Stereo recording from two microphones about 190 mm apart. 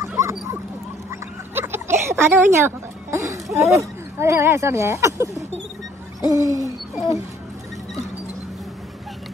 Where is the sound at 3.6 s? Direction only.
15° right (ahead or behind).